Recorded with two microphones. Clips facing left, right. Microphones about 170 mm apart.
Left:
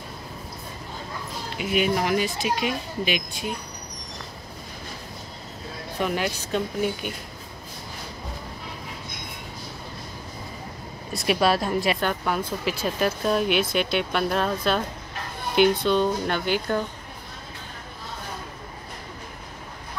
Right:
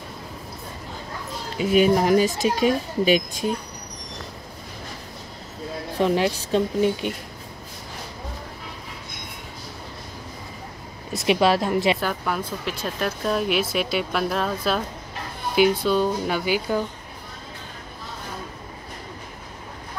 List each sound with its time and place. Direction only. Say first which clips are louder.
1.6 s speech: right 6 dB; 40° right (ahead or behind)
5.9 s speech: right 5 dB; 30° right (ahead or behind)
11.1 s speech: right 2 dB; 20° right (ahead or behind)
12.0 s speech: left 1 dB; centre (ahead or behind)